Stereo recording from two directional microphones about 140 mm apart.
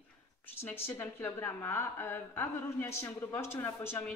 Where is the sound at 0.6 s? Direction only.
15° left (ahead or behind).